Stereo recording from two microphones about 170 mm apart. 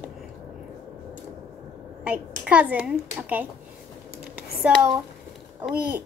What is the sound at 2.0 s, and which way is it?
Speech, 5° right (ahead or behind).